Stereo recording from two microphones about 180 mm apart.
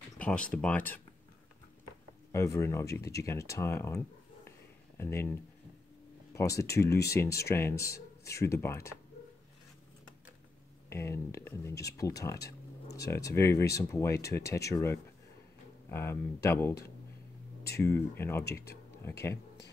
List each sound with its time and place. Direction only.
0.2 s speech: 5° left (ahead or behind)
2.3 s speech: 15° left (ahead or behind)
4.5 s a sound: 15° left (ahead or behind)
6.3 s speech: 15° left (ahead or behind)
10.9 s speech: 15° left (ahead or behind)
17.7 s speech: 15° left (ahead or behind)
18.4 s speech: 60° left (ahead or behind)